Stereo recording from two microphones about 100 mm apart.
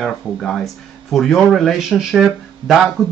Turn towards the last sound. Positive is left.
turn(degrees=-5)  # may be behind; listen again after turning